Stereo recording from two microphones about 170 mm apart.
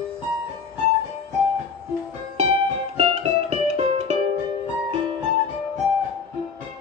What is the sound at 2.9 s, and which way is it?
Music, 40° right (ahead or behind).